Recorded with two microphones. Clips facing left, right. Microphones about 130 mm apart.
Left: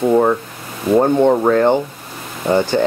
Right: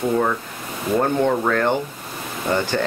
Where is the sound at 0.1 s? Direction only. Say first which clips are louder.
Left 7 dB; 30° left (ahead or behind).